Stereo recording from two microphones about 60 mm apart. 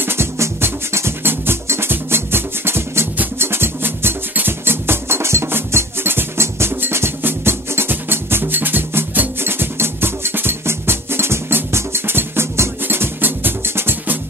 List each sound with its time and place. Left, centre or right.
0.0 s music: right